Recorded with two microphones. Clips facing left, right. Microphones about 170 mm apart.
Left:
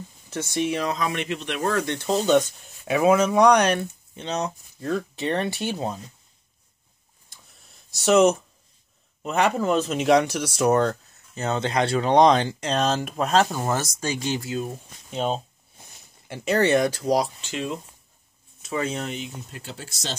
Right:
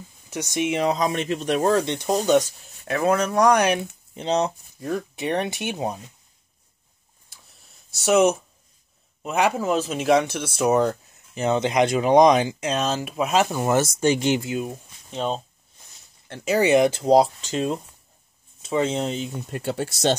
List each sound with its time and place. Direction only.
0.3 s speech: 15° right (ahead or behind)
2.2 s speech: 5° right (ahead or behind)
4.1 s speech: 30° right (ahead or behind)
4.7 s speech: 15° right (ahead or behind)
7.9 s speech: 5° right (ahead or behind)
13.7 s speech: 25° right (ahead or behind)
15.0 s speech: 5° left (ahead or behind)
16.5 s speech: 15° right (ahead or behind)
17.5 s speech: 40° right (ahead or behind)
18.6 s speech: 25° right (ahead or behind)
19.5 s speech: 60° right (ahead or behind)